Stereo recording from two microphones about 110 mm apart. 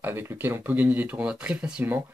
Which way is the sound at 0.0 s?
20° right (ahead or behind).